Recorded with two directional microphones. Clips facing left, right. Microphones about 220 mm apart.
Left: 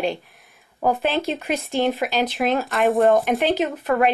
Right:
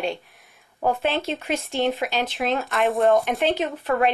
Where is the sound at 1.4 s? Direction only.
Centre (ahead or behind).